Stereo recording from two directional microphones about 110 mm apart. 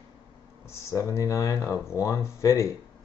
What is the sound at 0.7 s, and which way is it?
Speech, 25° left (ahead or behind).